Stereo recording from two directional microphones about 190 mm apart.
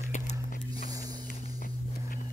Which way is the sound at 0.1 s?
40° left (ahead or behind).